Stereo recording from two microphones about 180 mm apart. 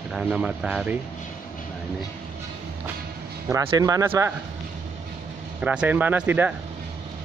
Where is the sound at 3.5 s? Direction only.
20° right (ahead or behind).